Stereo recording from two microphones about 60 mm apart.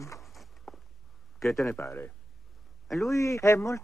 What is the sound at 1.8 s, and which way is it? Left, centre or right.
Speech, left.